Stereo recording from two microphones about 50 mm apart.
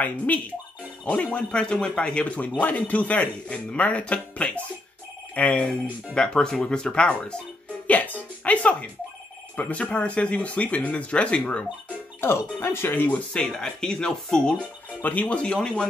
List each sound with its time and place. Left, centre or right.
1.0 s speech: left
7.8 s music: left
9.6 s speech: left
12.2 s speech: left
13.3 s speech: centre
15.0 s speech: left; by 15.9 s centre